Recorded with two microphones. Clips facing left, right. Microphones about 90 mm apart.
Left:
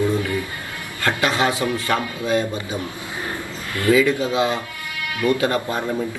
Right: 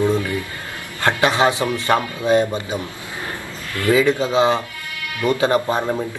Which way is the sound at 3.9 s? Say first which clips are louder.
Right 1 dB; 25° right (ahead or behind).